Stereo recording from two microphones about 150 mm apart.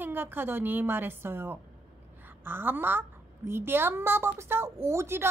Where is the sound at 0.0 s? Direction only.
15° right (ahead or behind).